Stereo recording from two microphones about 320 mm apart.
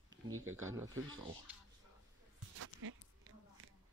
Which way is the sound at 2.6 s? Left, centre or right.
Right.